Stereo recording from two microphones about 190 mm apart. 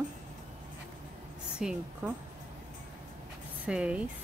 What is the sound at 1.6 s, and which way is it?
Speech, 5° right (ahead or behind).